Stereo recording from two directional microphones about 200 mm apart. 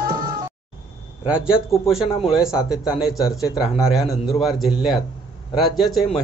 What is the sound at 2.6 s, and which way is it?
Speech, centre (ahead or behind).